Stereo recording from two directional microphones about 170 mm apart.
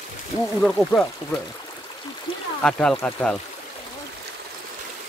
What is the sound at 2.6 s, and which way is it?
Speech, 5° left (ahead or behind).